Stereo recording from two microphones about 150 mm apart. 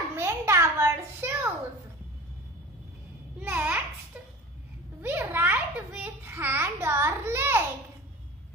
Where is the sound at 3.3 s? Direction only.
10° right (ahead or behind).